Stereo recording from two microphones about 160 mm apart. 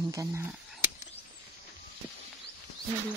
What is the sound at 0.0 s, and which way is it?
Speech, 20° right (ahead or behind).